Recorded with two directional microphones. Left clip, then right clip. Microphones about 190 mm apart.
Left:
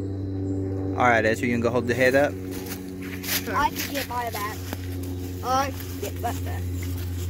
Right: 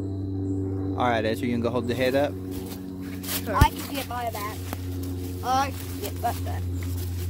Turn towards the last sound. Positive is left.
turn(degrees=5)  # may be behind; listen again after turning